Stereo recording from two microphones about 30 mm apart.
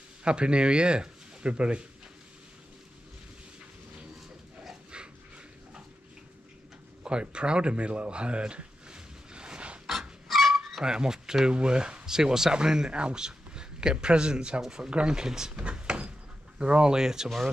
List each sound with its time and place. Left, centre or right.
0.2 s speech: right
4.9 s dog: right
7.1 s a sound: right
9.8 s dog: centre
10.8 s a man's voice: right
15.2 s speech: centre
15.6 s door: right
16.5 s speech: right